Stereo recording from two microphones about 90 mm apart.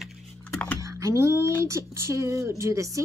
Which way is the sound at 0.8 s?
35° right (ahead or behind).